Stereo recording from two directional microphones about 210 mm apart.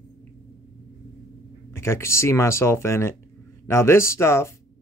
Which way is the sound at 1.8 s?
15° left (ahead or behind).